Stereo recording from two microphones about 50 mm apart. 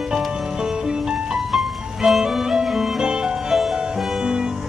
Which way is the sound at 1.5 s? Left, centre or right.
Centre.